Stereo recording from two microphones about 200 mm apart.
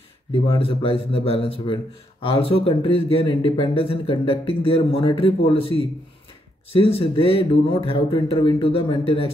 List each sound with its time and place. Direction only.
0.3 s speech: 25° left (ahead or behind)